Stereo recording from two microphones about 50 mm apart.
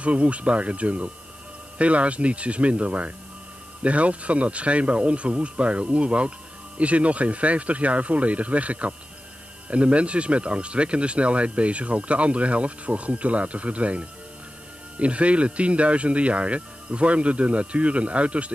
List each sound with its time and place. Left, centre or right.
0.0 s speech: right